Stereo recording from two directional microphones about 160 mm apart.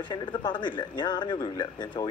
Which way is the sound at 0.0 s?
30° left (ahead or behind).